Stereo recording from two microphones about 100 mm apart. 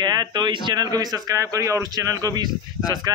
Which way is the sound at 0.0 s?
45° right (ahead or behind).